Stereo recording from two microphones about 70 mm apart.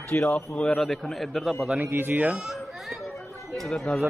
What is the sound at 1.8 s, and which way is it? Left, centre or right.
Speech, right.